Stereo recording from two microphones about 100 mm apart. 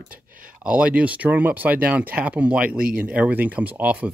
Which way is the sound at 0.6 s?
10° right (ahead or behind).